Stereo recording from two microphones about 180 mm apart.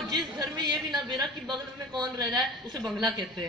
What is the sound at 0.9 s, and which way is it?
A woman's voice, 25° right (ahead or behind).